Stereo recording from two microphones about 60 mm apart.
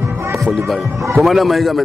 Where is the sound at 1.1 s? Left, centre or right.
Centre.